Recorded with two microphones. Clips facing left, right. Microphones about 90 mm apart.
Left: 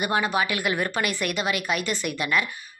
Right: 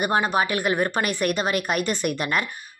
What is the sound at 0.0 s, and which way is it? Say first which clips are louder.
A woman's voice: right 2 dB; 35° right (ahead or behind).